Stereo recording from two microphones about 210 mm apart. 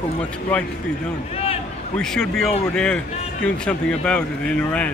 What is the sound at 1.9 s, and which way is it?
Speech, 5° left (ahead or behind).